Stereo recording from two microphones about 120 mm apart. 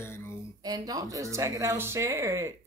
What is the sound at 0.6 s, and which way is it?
Speech, 35° right (ahead or behind).